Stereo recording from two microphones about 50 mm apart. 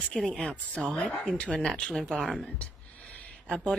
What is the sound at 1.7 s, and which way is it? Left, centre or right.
Speech, centre.